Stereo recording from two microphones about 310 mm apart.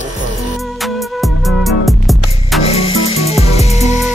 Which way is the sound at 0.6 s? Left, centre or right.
Centre.